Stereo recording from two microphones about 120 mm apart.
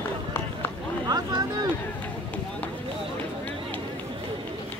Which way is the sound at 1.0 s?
30° right (ahead or behind).